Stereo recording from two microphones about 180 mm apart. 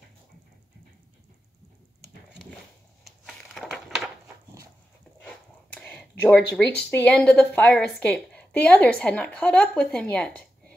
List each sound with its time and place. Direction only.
3.1 s crushing: centre (ahead or behind)
5.2 s speech: 5° left (ahead or behind)